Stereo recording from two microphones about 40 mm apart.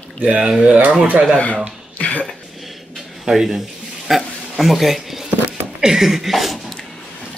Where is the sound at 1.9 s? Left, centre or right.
Left.